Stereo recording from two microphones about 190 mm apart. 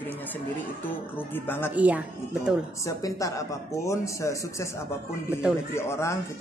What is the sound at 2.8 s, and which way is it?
A man's voice, 15° left (ahead or behind).